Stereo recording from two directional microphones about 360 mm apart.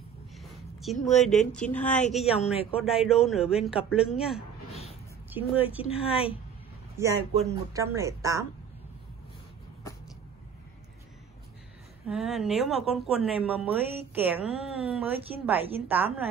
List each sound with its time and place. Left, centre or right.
0.4 s a woman's voice: centre
2.2 s speech: centre
2.7 s speech: centre
5.9 s speech: centre
7.0 s a woman's voice: centre
12.1 s speech: centre